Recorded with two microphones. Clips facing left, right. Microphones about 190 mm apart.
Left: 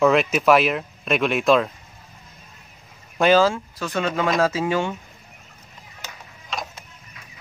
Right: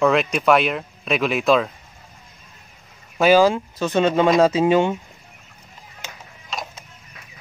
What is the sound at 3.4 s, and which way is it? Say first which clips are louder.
Speech: right 3 dB; 20° right (ahead or behind).